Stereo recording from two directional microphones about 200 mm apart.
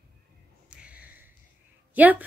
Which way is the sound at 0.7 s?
5° right (ahead or behind).